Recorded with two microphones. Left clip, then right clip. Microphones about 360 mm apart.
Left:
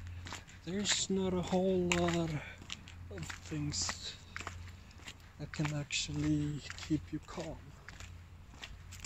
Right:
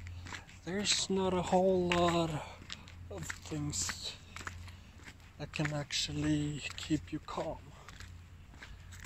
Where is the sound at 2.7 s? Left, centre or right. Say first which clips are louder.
Left 4 dB; centre.